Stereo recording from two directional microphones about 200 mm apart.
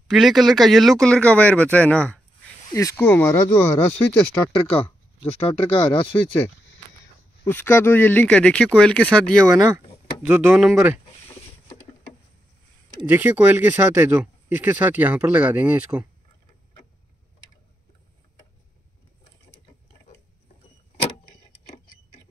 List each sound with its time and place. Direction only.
0.1 s speech: centre (ahead or behind)
4.6 s speech: 25° left (ahead or behind)
7.4 s speech: 10° left (ahead or behind)
10.2 s speech: 10° right (ahead or behind)
13.0 s speech: 10° right (ahead or behind)